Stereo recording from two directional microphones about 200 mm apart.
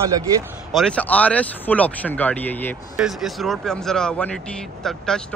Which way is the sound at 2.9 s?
Centre (ahead or behind).